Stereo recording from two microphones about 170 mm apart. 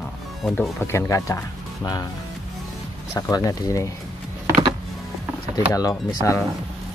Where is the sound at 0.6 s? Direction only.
15° left (ahead or behind).